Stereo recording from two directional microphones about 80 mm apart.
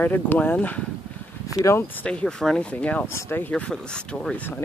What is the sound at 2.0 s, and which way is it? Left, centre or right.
Speech, centre.